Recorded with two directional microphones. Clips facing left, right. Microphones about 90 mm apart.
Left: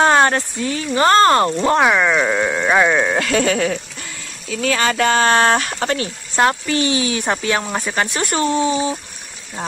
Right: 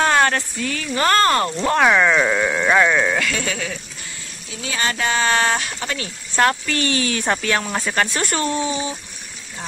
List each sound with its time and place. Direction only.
0.0 s speech: 30° left (ahead or behind)
1.8 s speech: 5° left (ahead or behind)
3.2 s speech: 45° left (ahead or behind)
4.5 s speech: 70° left (ahead or behind); by 5.9 s 50° left (ahead or behind)
6.3 s speech: 20° left (ahead or behind)